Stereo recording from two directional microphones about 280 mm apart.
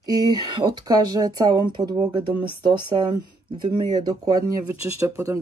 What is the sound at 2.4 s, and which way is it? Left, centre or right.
Speech, right.